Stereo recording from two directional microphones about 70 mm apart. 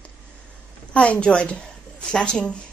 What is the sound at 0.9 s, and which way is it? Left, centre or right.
A woman's voice, centre.